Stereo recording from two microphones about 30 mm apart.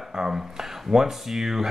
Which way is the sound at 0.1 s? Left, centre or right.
Centre.